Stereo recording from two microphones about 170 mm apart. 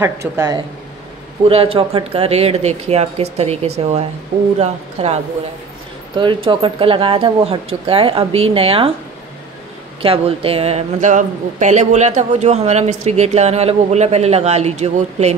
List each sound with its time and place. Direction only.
0.0 s speech: 20° right (ahead or behind)
1.5 s speech: 35° right (ahead or behind)
6.1 s speech: 30° right (ahead or behind)
10.0 s speech: 35° right (ahead or behind)